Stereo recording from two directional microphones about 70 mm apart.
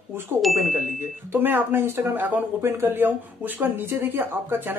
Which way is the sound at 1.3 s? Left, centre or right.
Right.